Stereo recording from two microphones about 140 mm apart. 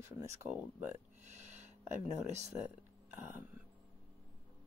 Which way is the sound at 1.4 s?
60° right (ahead or behind).